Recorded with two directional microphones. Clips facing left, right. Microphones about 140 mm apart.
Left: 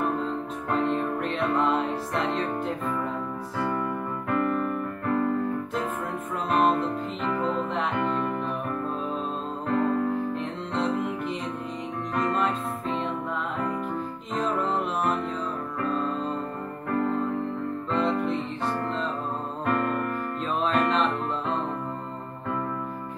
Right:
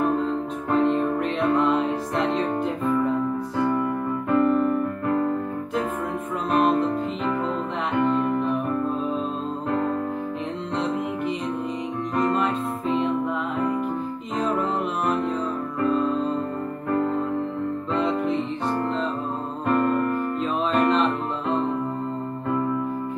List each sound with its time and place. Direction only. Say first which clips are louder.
0.0 s music: right 5 dB; centre (ahead or behind)
4.4 s keyboard: right 7 dB; 25° right (ahead or behind)
6.5 s music: right 3 dB; centre (ahead or behind)
9.8 s music: left 4 dB; centre (ahead or behind)
14.3 s music: right 2 dB; centre (ahead or behind)
19.6 s music: right 5 dB; centre (ahead or behind)